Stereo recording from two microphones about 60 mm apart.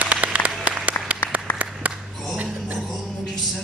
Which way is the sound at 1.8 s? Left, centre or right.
Right.